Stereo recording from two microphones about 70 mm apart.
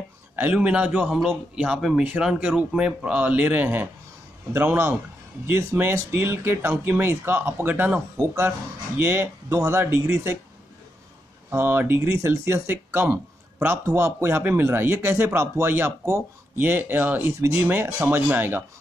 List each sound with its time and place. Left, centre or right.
0.4 s a man's voice: centre
1.8 s speech: centre
2.0 s speech: centre
4.6 s speech: right
11.5 s speech: right